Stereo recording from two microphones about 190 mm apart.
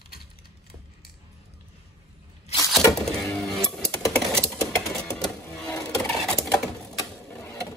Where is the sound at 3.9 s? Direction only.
10° left (ahead or behind).